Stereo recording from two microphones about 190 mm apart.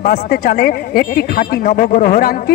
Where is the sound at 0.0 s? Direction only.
55° left (ahead or behind).